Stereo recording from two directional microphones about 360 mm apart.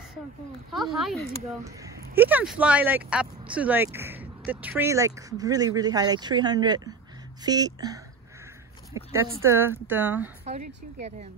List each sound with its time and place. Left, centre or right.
0.7 s speech: centre
11.0 s speech: centre